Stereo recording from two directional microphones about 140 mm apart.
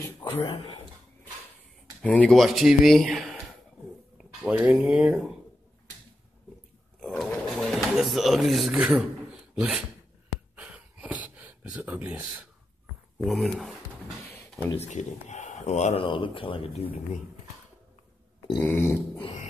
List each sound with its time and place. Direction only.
0.0 s speech: 35° left (ahead or behind)
2.0 s speech: 10° left (ahead or behind); by 5.3 s 5° right (ahead or behind)
7.0 s pigeon: 5° left (ahead or behind)
8.7 s speech: 10° right (ahead or behind)
10.5 s a sound: 10° right (ahead or behind)
13.2 s speech: centre (ahead or behind)
14.8 s speech: 55° left (ahead or behind)
16.1 s speech: 40° left (ahead or behind)
18.6 s a sound: 15° left (ahead or behind)